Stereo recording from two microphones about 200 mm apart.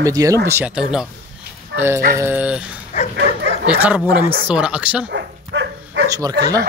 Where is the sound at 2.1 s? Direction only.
10° right (ahead or behind).